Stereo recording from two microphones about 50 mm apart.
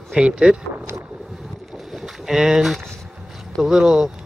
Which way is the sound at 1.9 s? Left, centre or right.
Centre.